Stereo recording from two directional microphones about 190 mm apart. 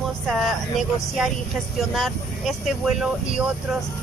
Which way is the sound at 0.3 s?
Centre (ahead or behind).